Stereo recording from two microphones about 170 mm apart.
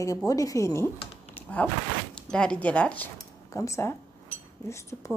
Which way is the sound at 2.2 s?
5° left (ahead or behind).